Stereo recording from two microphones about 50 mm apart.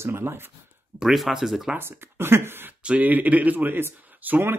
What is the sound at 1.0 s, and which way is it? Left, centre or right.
Speech, centre.